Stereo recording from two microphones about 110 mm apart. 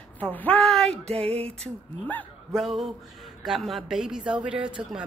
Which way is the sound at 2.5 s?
Centre (ahead or behind).